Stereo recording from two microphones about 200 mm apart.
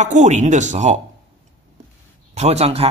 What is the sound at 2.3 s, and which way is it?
Speech, 35° right (ahead or behind).